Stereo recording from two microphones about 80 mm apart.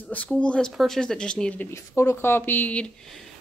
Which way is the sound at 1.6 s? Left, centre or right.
Left.